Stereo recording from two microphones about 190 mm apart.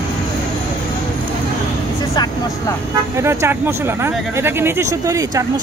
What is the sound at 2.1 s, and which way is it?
Vehicle, 20° left (ahead or behind).